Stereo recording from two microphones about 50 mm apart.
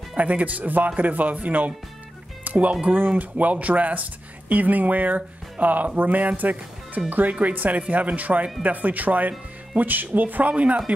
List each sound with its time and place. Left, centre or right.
0.2 s speech: right